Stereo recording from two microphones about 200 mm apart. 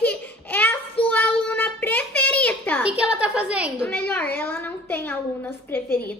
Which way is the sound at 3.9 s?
10° left (ahead or behind).